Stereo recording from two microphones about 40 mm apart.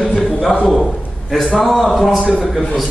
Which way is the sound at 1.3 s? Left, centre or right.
Centre.